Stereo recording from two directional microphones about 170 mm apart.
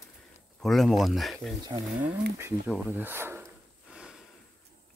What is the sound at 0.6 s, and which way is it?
Speech, centre (ahead or behind).